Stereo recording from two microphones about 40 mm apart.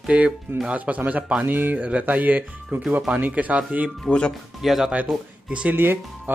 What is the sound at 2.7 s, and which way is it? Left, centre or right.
Speech, right.